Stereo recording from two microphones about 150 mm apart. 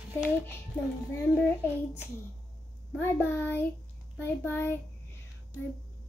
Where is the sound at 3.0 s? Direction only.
15° left (ahead or behind).